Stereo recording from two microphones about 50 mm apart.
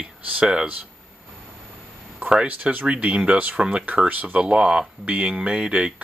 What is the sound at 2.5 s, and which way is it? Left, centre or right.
Speech, right.